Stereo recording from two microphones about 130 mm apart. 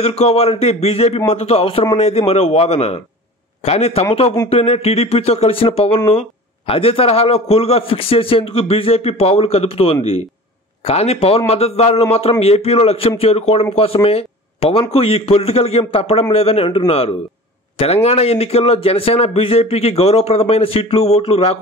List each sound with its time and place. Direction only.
0.0 s a man's voice: 50° left (ahead or behind)